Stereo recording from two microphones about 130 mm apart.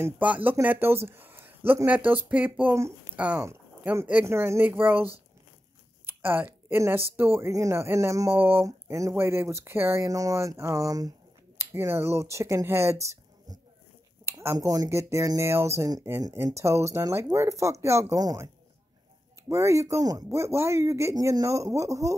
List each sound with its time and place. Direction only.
0.0 s speech: 10° right (ahead or behind); by 18.5 s 30° right (ahead or behind)
19.5 s speech: 25° right (ahead or behind)